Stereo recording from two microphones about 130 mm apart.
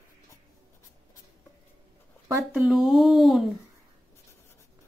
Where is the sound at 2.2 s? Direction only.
15° right (ahead or behind).